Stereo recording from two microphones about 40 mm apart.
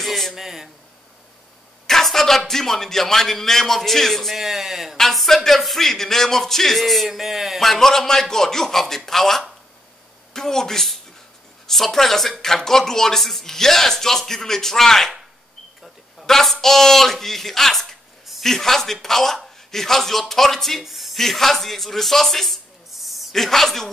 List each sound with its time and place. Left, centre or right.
0.0 s a sound: centre
0.4 s speech: centre
1.9 s speech: centre
4.4 s speech: centre
4.9 s speech: centre
16.3 s a sound: centre
16.6 s speech: centre
20.8 s a sound: centre
21.2 s speech: centre